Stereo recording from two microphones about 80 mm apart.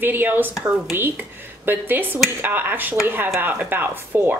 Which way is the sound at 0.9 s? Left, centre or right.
Right.